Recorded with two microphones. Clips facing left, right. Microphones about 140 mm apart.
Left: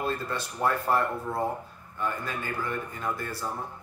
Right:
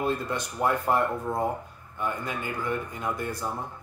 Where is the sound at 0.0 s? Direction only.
15° right (ahead or behind).